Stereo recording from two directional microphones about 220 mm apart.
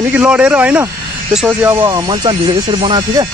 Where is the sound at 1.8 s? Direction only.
20° right (ahead or behind).